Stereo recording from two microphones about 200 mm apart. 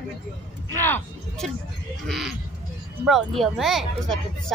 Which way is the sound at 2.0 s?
Centre (ahead or behind).